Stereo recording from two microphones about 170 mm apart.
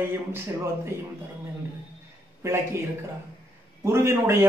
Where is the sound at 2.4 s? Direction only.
15° right (ahead or behind).